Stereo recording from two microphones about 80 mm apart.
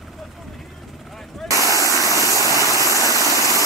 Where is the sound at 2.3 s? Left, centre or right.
Right.